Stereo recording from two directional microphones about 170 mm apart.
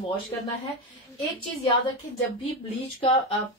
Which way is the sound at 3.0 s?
35° left (ahead or behind).